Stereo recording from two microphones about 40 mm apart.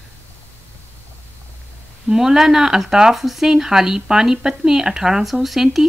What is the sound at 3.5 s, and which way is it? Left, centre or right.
Speech, centre.